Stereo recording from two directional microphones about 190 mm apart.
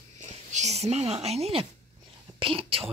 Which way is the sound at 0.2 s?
40° right (ahead or behind).